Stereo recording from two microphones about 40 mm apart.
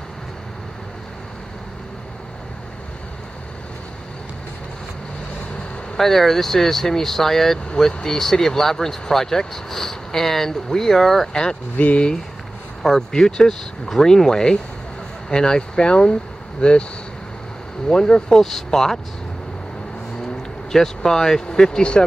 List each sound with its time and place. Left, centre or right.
5.9 s speech: centre
11.7 s speech: left
13.1 s speech: centre
17.8 s speech: left
18.4 s speech: centre
20.7 s speech: centre